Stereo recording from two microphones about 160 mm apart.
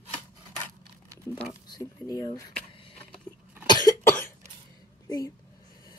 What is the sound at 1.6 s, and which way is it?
Speech, 25° left (ahead or behind).